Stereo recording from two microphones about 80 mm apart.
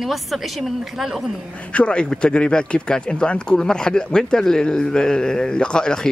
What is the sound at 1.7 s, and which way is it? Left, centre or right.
A woman's voice, centre.